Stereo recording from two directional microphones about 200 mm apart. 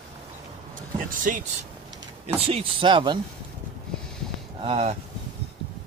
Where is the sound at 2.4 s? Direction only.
30° right (ahead or behind).